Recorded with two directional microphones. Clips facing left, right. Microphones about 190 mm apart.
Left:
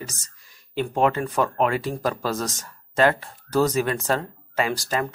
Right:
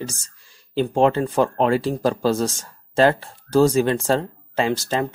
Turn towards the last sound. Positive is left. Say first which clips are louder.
# right 3 dB
turn(degrees=-25)  # may be behind; listen again after turning